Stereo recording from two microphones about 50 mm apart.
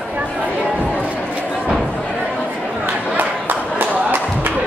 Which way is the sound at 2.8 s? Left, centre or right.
Right.